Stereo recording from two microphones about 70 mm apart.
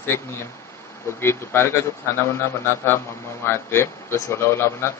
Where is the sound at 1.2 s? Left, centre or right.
Left.